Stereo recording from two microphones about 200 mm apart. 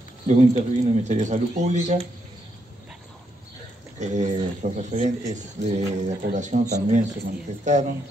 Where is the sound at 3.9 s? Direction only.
35° right (ahead or behind).